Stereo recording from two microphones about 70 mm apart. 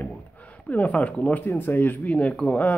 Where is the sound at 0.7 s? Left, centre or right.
Left.